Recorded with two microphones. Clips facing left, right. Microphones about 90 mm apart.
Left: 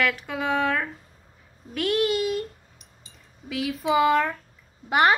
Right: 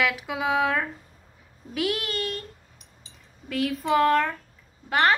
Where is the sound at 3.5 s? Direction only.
Centre (ahead or behind).